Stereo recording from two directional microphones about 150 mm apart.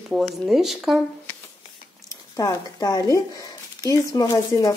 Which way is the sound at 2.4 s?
20° left (ahead or behind).